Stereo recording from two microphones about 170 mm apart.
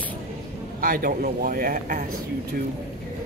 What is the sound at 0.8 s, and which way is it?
Speech, 55° right (ahead or behind).